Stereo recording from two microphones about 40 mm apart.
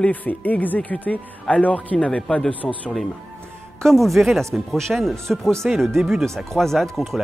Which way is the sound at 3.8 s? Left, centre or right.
Centre.